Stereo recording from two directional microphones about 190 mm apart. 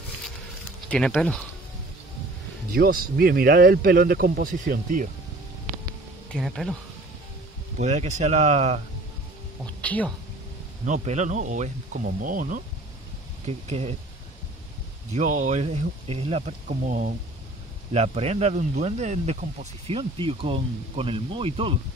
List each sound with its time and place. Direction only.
0.8 s speech: 5° left (ahead or behind)
2.7 s speech: 50° right (ahead or behind)
6.3 s speech: centre (ahead or behind)
7.8 s speech: 35° right (ahead or behind)
9.8 s a woman's voice: 5° left (ahead or behind)
10.9 s speech: 40° right (ahead or behind)
13.5 s speech: 35° right (ahead or behind)
15.1 s speech: 40° right (ahead or behind)